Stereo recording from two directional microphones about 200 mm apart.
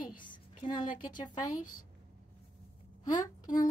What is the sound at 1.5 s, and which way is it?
Speech, 90° left.